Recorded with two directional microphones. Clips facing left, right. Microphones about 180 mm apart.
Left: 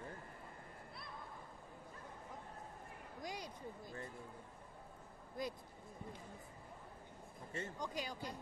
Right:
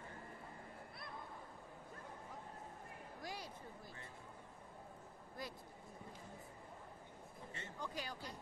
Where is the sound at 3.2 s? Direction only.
15° left (ahead or behind).